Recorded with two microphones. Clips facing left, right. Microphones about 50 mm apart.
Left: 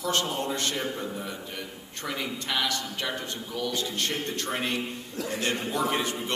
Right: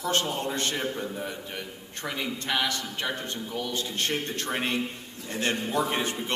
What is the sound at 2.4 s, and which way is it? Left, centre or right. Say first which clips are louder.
Speech: right 1 dB; right.